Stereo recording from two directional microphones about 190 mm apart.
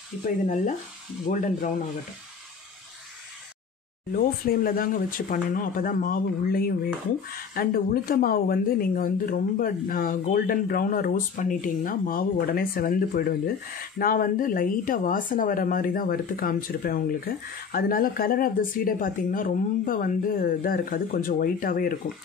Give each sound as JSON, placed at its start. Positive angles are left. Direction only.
{"t": 1.3, "sound": "speech", "side_deg": 45}
{"t": 4.1, "sound": "speech", "side_deg": 50}